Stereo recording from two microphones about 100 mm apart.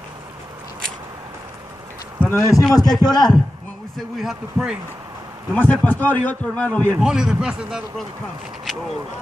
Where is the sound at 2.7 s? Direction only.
40° left (ahead or behind).